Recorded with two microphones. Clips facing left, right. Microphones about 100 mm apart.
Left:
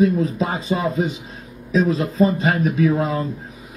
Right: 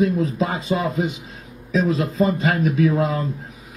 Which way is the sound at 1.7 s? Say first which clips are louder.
Left 1 dB; 40° left (ahead or behind).